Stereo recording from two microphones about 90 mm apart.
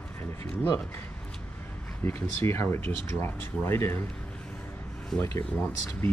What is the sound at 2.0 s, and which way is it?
Speech, 25° left (ahead or behind).